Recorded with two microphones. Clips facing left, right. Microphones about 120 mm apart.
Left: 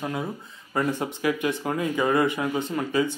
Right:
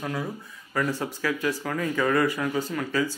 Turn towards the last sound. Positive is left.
turn(degrees=20)  # may be behind; listen again after turning